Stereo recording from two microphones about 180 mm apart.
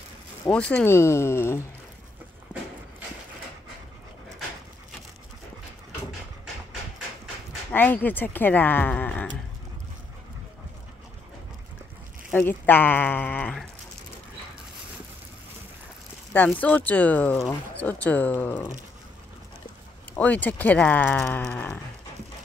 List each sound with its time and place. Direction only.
0.5 s speech: 5° left (ahead or behind)
7.7 s speech: 10° left (ahead or behind)
12.3 s speech: 10° left (ahead or behind)
16.3 s speech: 10° left (ahead or behind)
20.2 s speech: 10° left (ahead or behind)